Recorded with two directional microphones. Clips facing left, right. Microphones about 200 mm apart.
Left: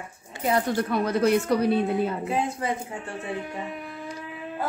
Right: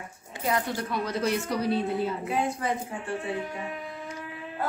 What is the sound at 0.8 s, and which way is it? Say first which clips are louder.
A woman's voice: left 6 dB; 55° left (ahead or behind).